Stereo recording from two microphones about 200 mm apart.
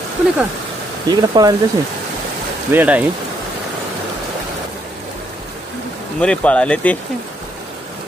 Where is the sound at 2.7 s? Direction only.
10° right (ahead or behind).